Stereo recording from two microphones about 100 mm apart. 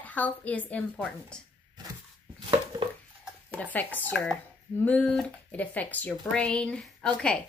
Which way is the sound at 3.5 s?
15° left (ahead or behind).